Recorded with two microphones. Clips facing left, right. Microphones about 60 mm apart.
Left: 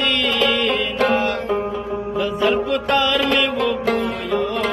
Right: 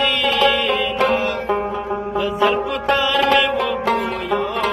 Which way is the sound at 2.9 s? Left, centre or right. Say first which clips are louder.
Right 1 dB; centre.